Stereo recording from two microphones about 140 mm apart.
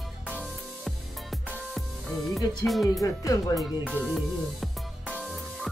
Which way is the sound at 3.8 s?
10° right (ahead or behind).